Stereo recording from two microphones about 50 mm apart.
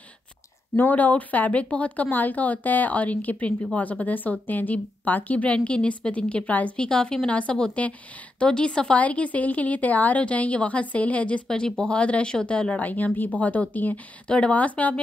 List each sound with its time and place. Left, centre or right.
0.7 s speech: left
6.8 s a woman's voice: centre
8.9 s a woman's voice: left
11.4 s a woman's voice: centre
12.7 s speech: left
14.2 s a woman's voice: left